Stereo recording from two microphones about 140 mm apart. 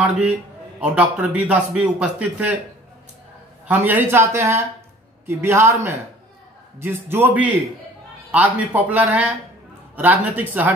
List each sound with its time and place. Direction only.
0.0 s a man's voice: 10° right (ahead or behind)
3.6 s a man's voice: 10° right (ahead or behind)